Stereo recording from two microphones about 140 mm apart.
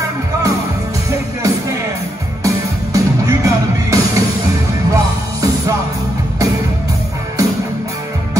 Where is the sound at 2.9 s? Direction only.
25° right (ahead or behind).